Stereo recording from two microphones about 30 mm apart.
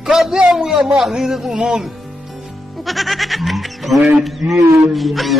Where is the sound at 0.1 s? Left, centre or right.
Centre.